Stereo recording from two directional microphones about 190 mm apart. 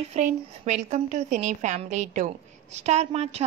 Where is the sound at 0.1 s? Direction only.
35° right (ahead or behind).